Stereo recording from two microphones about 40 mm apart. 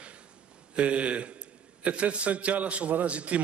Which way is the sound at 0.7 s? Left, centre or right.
Right.